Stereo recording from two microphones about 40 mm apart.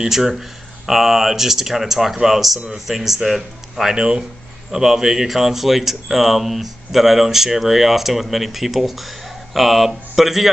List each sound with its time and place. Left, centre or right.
0.0 s speech: centre
3.9 s speech: centre